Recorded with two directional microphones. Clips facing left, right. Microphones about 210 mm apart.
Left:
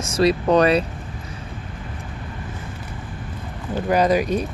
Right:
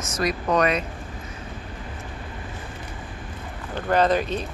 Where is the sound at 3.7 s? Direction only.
10° left (ahead or behind).